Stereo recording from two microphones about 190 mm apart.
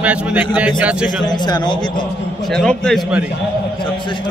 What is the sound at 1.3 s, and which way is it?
Speech, 20° left (ahead or behind).